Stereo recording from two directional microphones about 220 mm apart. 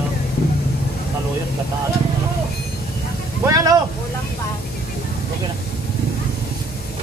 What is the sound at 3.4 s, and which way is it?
Speech, 15° right (ahead or behind).